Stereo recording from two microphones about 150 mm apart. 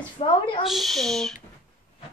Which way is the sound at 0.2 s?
35° left (ahead or behind).